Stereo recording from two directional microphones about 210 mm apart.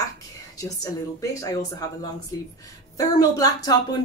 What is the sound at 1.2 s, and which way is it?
Speech, 15° left (ahead or behind).